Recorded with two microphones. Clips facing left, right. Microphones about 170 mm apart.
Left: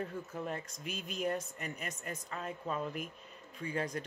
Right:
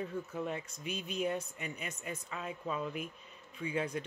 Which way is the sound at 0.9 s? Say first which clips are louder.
Right 1 dB; 45° left (ahead or behind).